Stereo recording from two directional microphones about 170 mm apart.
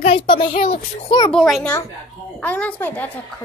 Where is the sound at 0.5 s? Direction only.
40° left (ahead or behind).